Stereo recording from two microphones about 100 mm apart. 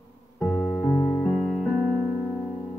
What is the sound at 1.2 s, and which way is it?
Music, 15° left (ahead or behind).